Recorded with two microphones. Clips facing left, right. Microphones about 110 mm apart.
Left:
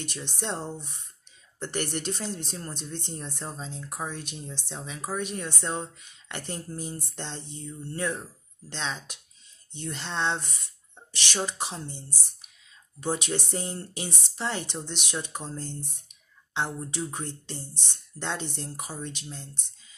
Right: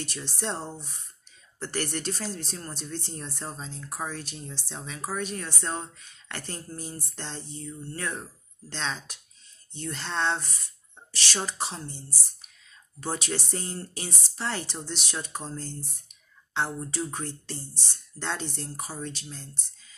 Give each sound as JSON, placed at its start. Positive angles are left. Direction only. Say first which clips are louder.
{"t": 0.0, "sound": "speech", "louder": "even", "side_deg": 15}
{"t": 1.6, "sound": "speech", "louder": "left 1 dB", "side_deg": 20}
{"t": 16.5, "sound": "speech", "louder": "right 1 dB", "side_deg": 15}